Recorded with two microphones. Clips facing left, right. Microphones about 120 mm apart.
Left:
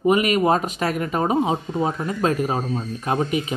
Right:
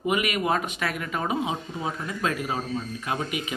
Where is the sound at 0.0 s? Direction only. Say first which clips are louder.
Left 8 dB; 35° left (ahead or behind).